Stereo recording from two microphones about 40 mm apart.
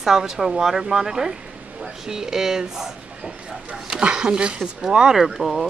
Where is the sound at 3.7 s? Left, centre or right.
Right.